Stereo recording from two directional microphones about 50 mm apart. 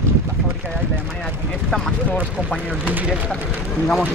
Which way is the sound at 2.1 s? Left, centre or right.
Left.